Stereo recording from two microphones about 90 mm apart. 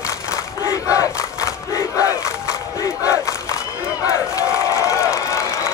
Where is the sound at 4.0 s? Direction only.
40° left (ahead or behind).